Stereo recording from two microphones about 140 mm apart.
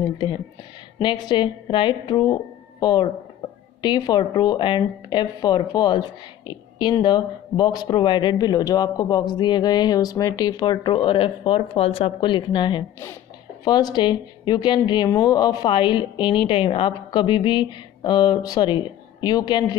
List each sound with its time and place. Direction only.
0.0 s speech: 35° left (ahead or behind)